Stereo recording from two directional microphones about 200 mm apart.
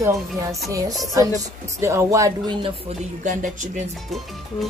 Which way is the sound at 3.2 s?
40° right (ahead or behind).